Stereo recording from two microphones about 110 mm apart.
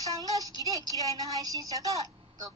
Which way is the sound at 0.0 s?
30° right (ahead or behind).